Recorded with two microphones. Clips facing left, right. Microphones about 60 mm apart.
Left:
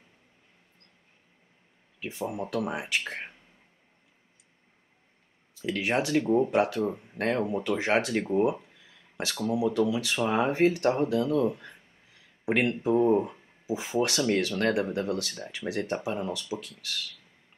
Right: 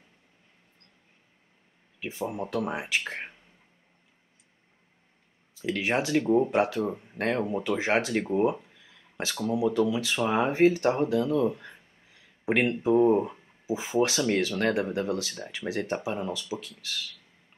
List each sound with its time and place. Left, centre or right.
2.0 s speech: centre
5.6 s speech: centre